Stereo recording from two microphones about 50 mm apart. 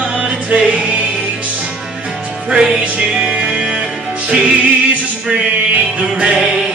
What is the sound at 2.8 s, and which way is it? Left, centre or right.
Music, right.